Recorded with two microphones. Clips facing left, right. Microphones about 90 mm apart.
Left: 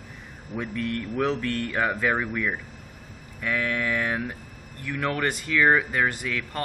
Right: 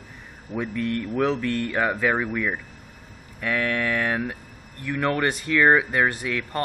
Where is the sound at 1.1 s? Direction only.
20° right (ahead or behind).